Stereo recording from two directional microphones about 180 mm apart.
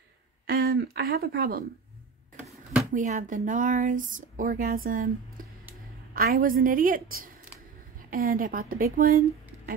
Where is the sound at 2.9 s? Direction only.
45° right (ahead or behind).